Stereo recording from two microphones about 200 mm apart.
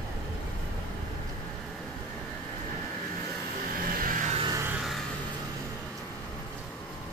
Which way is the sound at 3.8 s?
45° right (ahead or behind).